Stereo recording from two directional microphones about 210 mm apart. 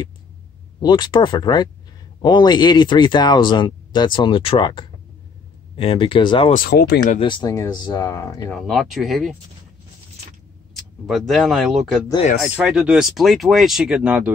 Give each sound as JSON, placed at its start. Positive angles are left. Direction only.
{"t": 0.7, "sound": "speech", "side_deg": 20}
{"t": 6.5, "sound": "speech", "side_deg": 45}
{"t": 7.2, "sound": "speech", "side_deg": 25}
{"t": 8.5, "sound": "speech", "side_deg": 0}
{"t": 11.1, "sound": "speech", "side_deg": 0}